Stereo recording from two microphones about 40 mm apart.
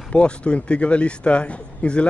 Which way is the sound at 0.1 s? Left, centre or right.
Left.